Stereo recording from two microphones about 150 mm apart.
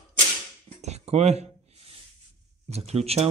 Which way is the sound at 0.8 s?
45° right (ahead or behind).